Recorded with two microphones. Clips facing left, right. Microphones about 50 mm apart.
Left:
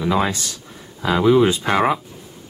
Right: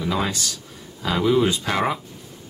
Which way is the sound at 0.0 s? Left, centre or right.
Centre.